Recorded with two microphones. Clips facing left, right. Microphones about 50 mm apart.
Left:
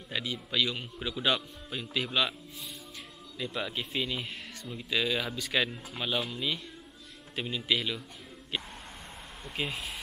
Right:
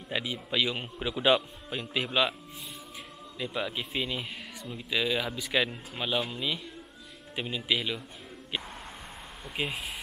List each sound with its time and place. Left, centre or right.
0.1 s speech: centre
3.3 s speech: centre
9.6 s speech: centre